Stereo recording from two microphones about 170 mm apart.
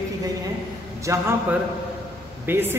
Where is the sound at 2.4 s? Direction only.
10° right (ahead or behind).